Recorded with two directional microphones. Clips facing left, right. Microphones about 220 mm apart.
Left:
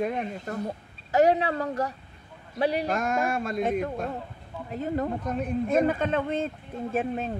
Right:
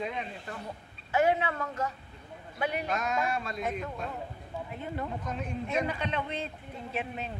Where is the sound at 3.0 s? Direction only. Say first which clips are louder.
Left 4 dB; 50° left (ahead or behind).